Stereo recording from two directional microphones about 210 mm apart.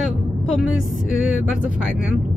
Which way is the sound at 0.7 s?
65° left (ahead or behind).